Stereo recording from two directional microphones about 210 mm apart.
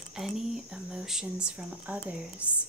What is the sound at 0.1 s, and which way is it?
Speech, 5° right (ahead or behind).